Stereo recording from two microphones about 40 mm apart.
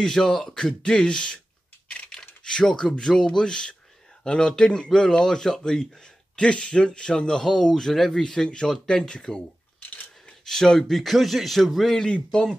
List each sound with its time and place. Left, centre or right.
0.0 s a man's voice: centre
2.4 s a man's voice: centre
10.4 s speech: centre
10.9 s a man's voice: centre
12.1 s a man's voice: left